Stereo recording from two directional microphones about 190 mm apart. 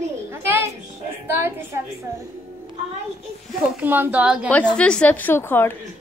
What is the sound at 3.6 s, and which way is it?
Speech, 10° right (ahead or behind).